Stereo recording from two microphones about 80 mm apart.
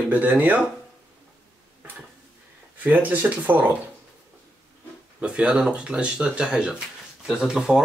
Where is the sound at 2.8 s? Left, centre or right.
Right.